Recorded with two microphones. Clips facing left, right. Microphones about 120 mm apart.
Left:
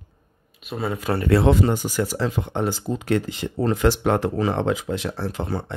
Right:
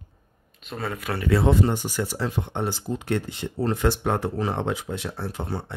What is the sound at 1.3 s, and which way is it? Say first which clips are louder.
Speech: left 3 dB; 90° left.